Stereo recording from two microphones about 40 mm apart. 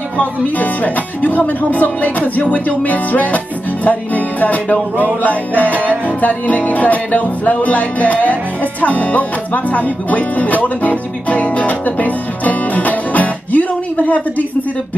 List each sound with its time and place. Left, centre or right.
0.2 s music: left
8.8 s speech: left